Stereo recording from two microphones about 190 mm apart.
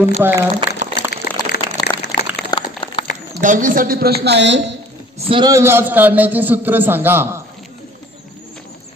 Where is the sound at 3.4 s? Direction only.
45° right (ahead or behind); by 4.7 s 70° right (ahead or behind).